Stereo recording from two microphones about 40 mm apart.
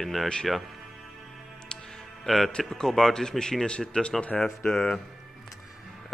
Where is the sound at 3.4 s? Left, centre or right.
Centre.